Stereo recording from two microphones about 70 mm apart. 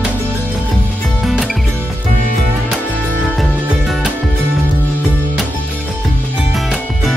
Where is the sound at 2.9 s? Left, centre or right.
Right.